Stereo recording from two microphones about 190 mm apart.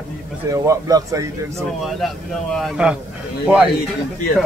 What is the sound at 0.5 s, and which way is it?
Speech, 20° right (ahead or behind).